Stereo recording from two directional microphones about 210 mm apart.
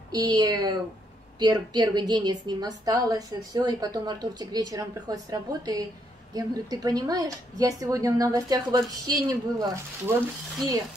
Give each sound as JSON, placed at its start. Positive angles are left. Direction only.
{"t": 0.1, "sound": "a woman's voice", "side_deg": -20}